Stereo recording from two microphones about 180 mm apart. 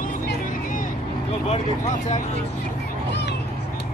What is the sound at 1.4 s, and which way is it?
Speech, 35° left (ahead or behind).